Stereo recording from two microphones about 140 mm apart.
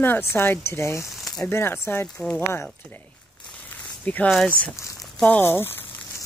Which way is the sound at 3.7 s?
10° left (ahead or behind).